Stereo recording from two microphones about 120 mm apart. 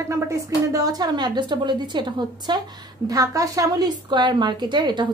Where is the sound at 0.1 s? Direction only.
30° right (ahead or behind).